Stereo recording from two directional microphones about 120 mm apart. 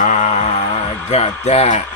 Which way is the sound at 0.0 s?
80° left.